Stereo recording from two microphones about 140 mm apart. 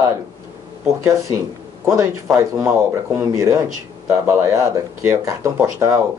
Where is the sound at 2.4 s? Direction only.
20° right (ahead or behind).